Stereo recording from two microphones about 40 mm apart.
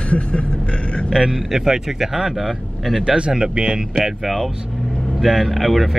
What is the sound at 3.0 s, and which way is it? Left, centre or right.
Speech, right.